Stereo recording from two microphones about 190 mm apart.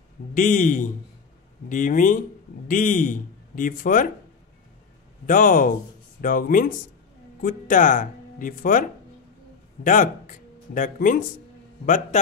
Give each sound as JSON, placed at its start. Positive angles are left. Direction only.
{"t": 0.3, "sound": "speech", "side_deg": 45}
{"t": 5.2, "sound": "speech", "side_deg": 45}
{"t": 9.8, "sound": "a man's voice", "side_deg": 45}